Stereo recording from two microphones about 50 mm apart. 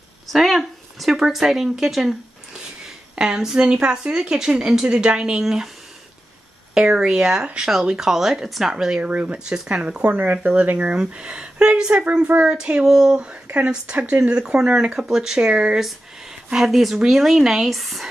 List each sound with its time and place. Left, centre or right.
0.3 s speech: centre
3.2 s a woman's voice: centre
6.7 s a woman's voice: centre
9.0 s speech: right
12.8 s a woman's voice: centre
14.3 s a woman's voice: centre